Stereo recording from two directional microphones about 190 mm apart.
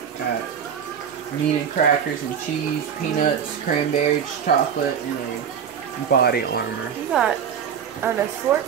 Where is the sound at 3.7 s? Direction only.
50° left (ahead or behind).